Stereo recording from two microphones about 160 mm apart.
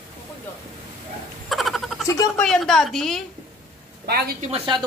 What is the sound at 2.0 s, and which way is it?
Speech, 20° left (ahead or behind).